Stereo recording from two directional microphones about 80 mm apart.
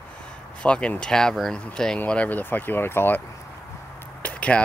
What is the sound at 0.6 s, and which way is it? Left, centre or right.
Speech, centre.